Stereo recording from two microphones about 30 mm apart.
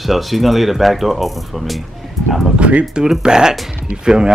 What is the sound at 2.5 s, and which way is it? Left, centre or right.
Speech, right.